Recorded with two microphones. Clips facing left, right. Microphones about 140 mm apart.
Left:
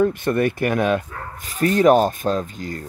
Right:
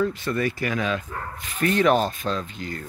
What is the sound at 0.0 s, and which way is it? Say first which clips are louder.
Speech: left 6 dB; 55° left (ahead or behind).